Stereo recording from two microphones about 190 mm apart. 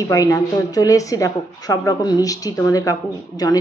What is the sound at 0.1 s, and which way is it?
A woman's voice, 20° left (ahead or behind).